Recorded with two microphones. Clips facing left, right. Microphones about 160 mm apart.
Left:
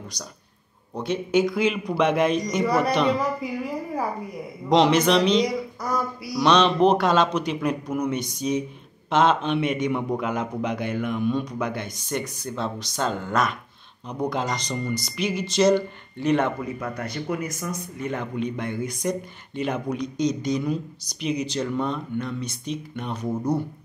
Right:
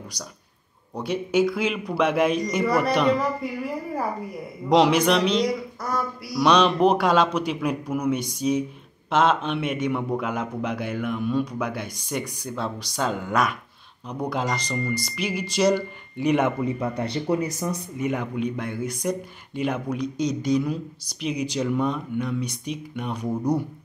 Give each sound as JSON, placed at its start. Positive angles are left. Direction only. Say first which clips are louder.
{"t": 0.9, "sound": "speech", "louder": "even", "side_deg": -10}
{"t": 4.6, "sound": "a man's voice", "louder": "even", "side_deg": -10}
{"t": 16.6, "sound": "speech", "louder": "right 4 dB", "side_deg": -25}
{"t": 17.9, "sound": "a man's voice", "louder": "right 1 dB", "side_deg": -10}